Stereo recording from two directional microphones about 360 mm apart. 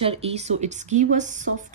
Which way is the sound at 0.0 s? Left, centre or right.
Centre.